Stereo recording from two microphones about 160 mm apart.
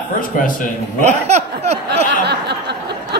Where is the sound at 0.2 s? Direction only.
55° left (ahead or behind).